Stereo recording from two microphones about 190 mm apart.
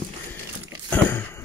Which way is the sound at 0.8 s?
10° left (ahead or behind).